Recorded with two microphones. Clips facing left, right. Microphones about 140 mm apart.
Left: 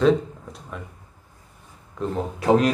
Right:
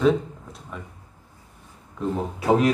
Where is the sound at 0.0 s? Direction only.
Centre (ahead or behind).